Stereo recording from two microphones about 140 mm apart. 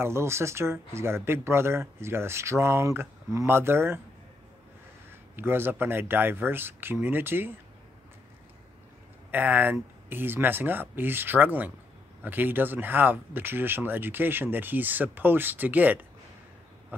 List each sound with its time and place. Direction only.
0.0 s speech: 20° right (ahead or behind)
5.3 s speech: 15° right (ahead or behind)
9.3 s speech: 15° right (ahead or behind)